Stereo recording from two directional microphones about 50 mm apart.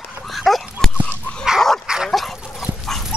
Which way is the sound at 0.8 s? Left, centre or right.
Centre.